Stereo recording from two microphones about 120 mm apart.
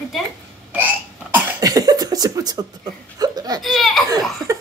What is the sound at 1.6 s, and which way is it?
Cough, 30° right (ahead or behind).